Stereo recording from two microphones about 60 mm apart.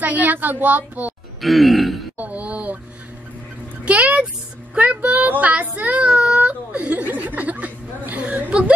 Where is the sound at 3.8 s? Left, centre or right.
Right.